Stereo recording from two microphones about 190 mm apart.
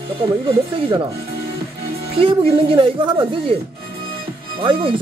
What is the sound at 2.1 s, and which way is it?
Speech, 30° right (ahead or behind).